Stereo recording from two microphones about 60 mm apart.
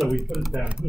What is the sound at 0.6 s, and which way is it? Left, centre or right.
Speech, centre.